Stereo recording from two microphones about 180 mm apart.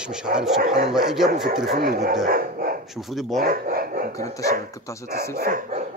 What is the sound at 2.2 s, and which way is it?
Dog, 55° right (ahead or behind).